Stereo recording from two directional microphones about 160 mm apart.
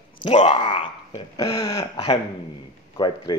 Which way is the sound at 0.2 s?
30° left (ahead or behind).